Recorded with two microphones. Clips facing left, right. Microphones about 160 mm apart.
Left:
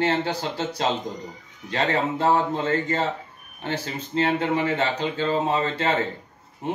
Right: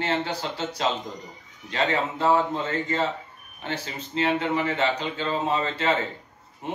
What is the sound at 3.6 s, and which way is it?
Speech, 40° left (ahead or behind).